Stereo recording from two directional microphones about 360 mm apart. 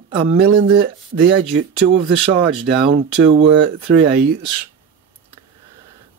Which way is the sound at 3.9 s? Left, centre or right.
Right.